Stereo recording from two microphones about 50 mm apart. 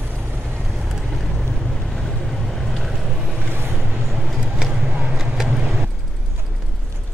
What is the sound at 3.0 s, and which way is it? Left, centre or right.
Vehicle, centre.